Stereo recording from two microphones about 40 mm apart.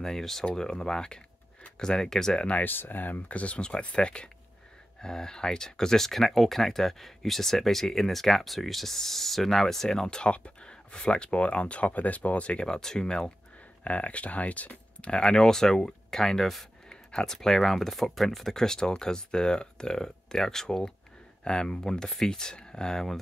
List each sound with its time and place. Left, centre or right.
0.0 s speech: centre
2.6 s speech: left
3.3 s speech: left
12.6 s speech: centre
13.8 s speech: left
15.0 s speech: left
16.9 s a sound: left
17.3 s speech: centre